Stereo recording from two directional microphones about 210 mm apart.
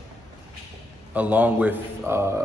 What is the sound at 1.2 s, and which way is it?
A man's voice, 10° right (ahead or behind).